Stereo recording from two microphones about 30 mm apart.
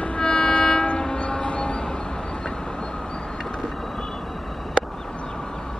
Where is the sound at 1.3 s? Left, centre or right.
Left.